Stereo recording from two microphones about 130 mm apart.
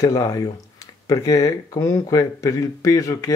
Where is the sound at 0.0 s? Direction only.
30° left (ahead or behind).